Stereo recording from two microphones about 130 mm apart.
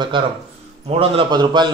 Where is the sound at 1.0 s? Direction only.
45° right (ahead or behind).